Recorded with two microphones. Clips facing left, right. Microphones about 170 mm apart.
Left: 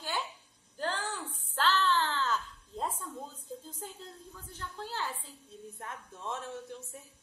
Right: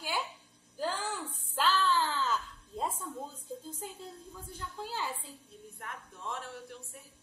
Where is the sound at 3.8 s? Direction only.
10° right (ahead or behind).